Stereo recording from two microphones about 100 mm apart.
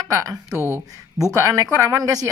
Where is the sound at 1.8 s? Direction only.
35° right (ahead or behind).